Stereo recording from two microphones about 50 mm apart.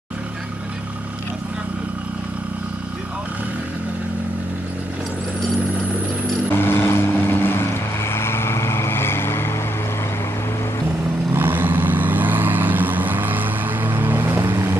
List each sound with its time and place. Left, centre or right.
6.5 s vehicle: left
11.3 s vehicle: right